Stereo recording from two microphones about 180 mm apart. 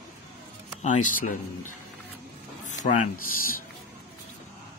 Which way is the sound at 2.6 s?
45° left (ahead or behind).